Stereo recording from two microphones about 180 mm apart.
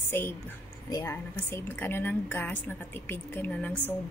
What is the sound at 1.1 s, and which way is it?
A woman's voice, 10° left (ahead or behind).